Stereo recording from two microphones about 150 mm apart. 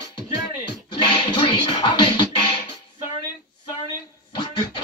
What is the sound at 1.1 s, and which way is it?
Music, 30° left (ahead or behind).